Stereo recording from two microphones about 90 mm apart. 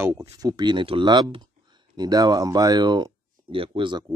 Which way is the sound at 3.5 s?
80° right.